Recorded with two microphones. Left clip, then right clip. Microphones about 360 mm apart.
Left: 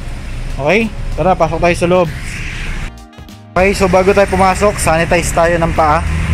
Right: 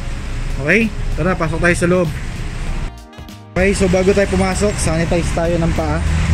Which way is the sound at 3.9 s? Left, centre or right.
Left.